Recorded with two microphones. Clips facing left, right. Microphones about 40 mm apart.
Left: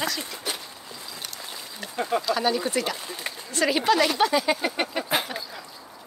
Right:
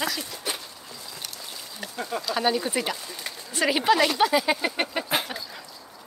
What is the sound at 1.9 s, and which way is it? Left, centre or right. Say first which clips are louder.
Speech: left 6 dB; left.